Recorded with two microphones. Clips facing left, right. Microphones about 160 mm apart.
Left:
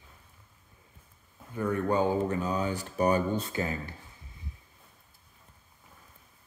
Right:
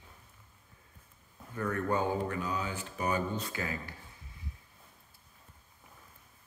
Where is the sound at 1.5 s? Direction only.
15° left (ahead or behind).